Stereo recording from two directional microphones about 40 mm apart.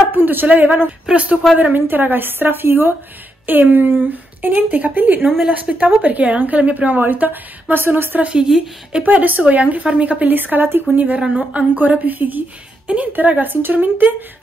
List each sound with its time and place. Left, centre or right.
0.1 s a woman's voice: right
0.5 s a woman's voice: right
1.6 s a woman's voice: right
3.4 s a woman's voice: right
7.0 s a woman's voice: right
8.2 s speech: right
9.1 s a woman's voice: right
10.2 s a woman's voice: right
11.3 s a woman's voice: right
12.8 s a woman's voice: right
13.3 s a woman's voice: right